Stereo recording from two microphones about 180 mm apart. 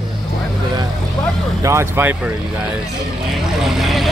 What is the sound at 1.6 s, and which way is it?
Speech, 15° right (ahead or behind).